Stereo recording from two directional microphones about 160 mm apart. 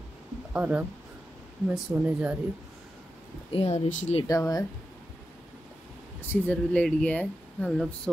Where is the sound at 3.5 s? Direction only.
40° left (ahead or behind).